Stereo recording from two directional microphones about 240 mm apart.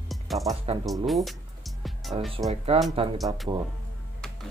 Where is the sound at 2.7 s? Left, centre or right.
Right.